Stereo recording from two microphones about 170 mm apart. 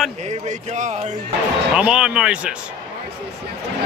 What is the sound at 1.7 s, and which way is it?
Speech, 5° right (ahead or behind).